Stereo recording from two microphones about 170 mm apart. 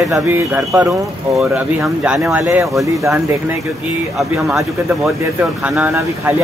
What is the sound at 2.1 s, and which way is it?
Speech, 15° right (ahead or behind).